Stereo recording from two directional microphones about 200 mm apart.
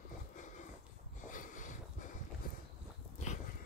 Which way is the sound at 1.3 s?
40° left (ahead or behind).